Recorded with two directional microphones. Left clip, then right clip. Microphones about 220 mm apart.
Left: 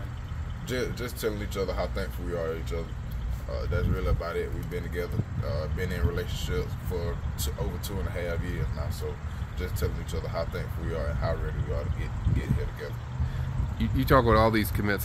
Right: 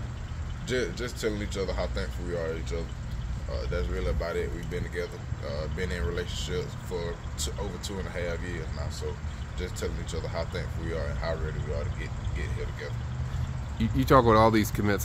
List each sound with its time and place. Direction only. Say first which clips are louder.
0.7 s speech: right 2 dB; centre (ahead or behind)
8.1 s speech: left 1 dB; centre (ahead or behind)
9.6 s speech: even; centre (ahead or behind)
13.7 s speech: right 2 dB; 15° right (ahead or behind)